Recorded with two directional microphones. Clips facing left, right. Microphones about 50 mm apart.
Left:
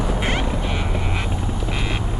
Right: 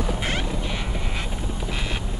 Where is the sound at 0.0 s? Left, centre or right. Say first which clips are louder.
Left 4 dB; centre.